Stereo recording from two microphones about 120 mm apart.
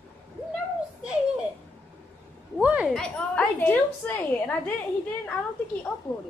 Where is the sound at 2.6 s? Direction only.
10° right (ahead or behind).